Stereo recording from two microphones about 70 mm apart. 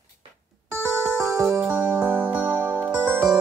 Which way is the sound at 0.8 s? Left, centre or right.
Centre.